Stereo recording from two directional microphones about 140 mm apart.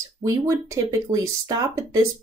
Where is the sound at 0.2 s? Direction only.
25° right (ahead or behind).